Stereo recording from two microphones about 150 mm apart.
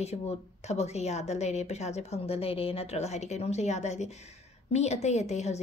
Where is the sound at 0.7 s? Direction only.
45° left (ahead or behind).